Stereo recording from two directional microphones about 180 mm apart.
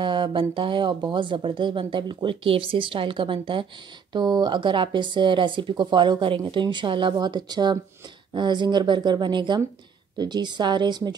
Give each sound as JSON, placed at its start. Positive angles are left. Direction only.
{"t": 0.0, "sound": "speech", "side_deg": -25}